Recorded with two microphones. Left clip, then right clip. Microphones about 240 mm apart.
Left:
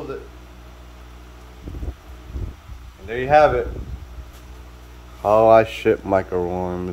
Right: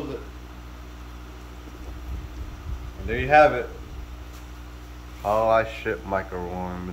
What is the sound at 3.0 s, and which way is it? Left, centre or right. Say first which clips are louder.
Speech: left 2 dB; centre.